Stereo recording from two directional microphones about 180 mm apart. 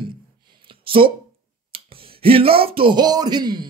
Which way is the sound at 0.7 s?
30° right (ahead or behind).